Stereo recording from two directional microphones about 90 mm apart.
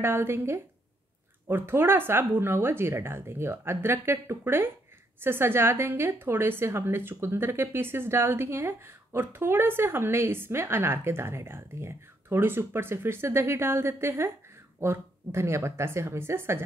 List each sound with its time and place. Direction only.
0.0 s a woman's voice: 25° right (ahead or behind)